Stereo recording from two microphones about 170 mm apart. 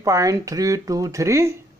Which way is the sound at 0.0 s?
20° right (ahead or behind).